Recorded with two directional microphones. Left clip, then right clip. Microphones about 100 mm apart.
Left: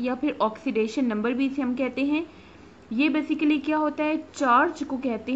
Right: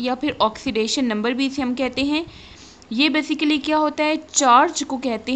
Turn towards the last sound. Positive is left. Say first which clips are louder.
# right 5 dB
turn(degrees=-25)  # may be behind; listen again after turning